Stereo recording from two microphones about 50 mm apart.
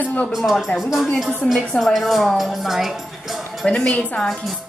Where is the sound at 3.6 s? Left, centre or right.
Centre.